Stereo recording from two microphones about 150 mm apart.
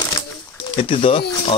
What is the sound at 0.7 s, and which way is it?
Speech, 35° left (ahead or behind).